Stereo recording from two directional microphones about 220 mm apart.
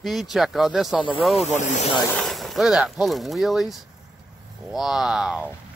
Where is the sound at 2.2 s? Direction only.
Centre (ahead or behind).